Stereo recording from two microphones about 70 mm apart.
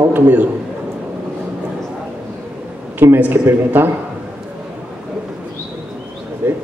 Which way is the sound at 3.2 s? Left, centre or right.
Right.